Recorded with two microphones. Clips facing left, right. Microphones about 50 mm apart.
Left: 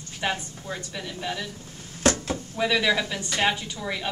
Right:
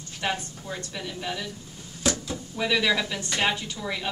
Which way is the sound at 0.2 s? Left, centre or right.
Centre.